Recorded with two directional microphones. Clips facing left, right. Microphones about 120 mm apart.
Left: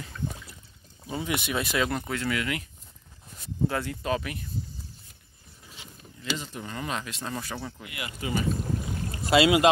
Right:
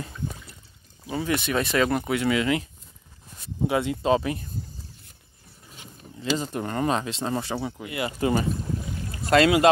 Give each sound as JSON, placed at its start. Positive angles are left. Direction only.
{"t": 1.1, "sound": "speech", "side_deg": 20}
{"t": 2.2, "sound": "speech", "side_deg": -25}
{"t": 3.6, "sound": "speech", "side_deg": -20}
{"t": 6.1, "sound": "speech", "side_deg": -40}
{"t": 6.5, "sound": "speech", "side_deg": -50}
{"t": 8.2, "sound": "speech", "side_deg": -45}
{"t": 9.2, "sound": "speech", "side_deg": 5}